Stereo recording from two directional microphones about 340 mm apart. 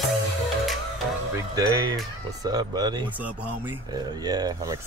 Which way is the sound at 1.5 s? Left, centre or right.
Centre.